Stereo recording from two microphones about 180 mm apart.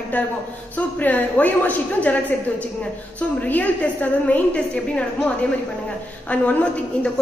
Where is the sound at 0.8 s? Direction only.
10° left (ahead or behind).